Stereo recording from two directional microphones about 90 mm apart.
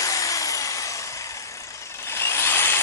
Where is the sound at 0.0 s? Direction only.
40° left (ahead or behind).